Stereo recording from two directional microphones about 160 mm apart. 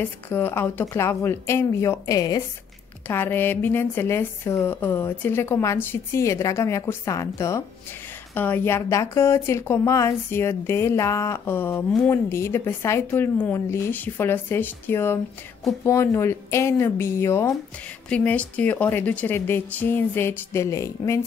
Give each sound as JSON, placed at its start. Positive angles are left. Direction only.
{"t": 0.0, "sound": "speech", "side_deg": 15}